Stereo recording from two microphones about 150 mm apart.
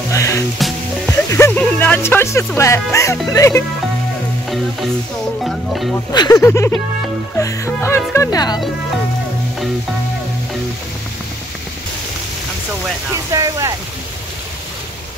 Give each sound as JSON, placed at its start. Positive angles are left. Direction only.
{"t": 0.1, "sound": "music", "side_deg": 20}
{"t": 0.6, "sound": "music", "side_deg": 0}
{"t": 1.3, "sound": "a sound", "side_deg": 20}
{"t": 1.6, "sound": "speech", "side_deg": 10}
{"t": 5.4, "sound": "speech", "side_deg": 0}
{"t": 6.1, "sound": "speech", "side_deg": 25}
{"t": 13.1, "sound": "speech", "side_deg": -20}